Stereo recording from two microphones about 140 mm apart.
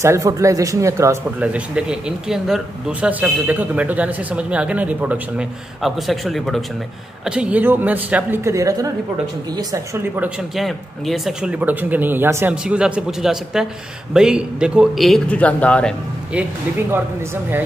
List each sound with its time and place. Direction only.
0.0 s a man's voice: 20° right (ahead or behind)
1.4 s a man's voice: 10° right (ahead or behind); by 10.0 s 25° right (ahead or behind)
10.5 s a man's voice: centre (ahead or behind)
11.6 s a man's voice: 10° right (ahead or behind); by 15.9 s 10° left (ahead or behind)